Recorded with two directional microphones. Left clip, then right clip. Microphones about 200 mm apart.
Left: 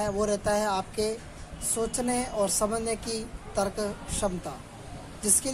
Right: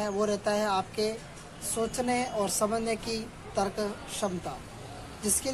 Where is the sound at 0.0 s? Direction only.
25° left (ahead or behind).